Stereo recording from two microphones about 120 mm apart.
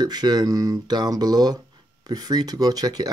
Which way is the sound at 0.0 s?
35° right (ahead or behind).